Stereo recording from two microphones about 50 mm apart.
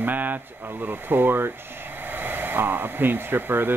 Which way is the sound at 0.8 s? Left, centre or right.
Right.